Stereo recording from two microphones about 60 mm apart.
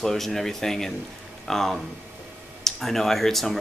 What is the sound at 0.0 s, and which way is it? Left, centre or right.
Speech, centre.